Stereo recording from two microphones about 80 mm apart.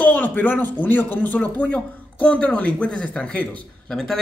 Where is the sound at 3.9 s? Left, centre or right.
Centre.